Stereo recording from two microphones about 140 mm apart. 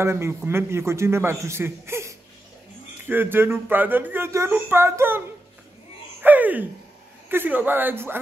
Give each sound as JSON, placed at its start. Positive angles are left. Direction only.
{"t": 0.0, "sound": "a man's voice", "side_deg": -20}
{"t": 6.2, "sound": "a sound", "side_deg": -10}
{"t": 7.2, "sound": "speech", "side_deg": -15}